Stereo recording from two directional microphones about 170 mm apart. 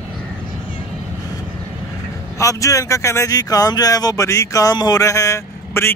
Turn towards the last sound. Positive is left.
turn(degrees=15)  # may be behind; listen again after turning